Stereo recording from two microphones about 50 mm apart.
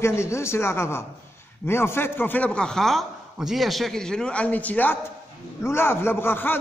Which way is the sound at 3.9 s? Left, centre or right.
Centre.